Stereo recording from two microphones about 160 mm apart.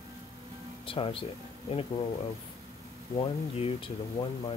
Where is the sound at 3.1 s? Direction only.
35° left (ahead or behind).